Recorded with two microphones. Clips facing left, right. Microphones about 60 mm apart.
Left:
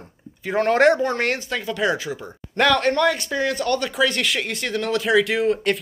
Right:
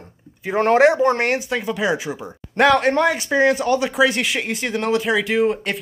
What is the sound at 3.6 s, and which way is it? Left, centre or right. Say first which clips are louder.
Speech: right 4 dB; centre.